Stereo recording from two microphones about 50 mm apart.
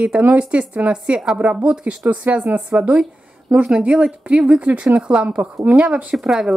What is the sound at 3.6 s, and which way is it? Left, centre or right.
Speech, right.